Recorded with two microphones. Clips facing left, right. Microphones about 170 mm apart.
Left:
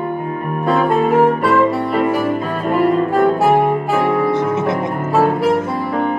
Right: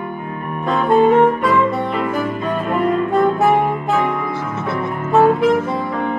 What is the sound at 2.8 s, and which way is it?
Saxophone, centre (ahead or behind).